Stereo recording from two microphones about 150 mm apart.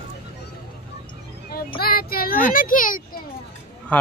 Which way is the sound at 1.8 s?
90° left.